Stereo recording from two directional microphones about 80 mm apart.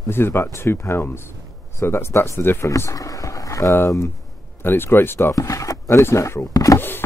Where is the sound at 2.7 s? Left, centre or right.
Left.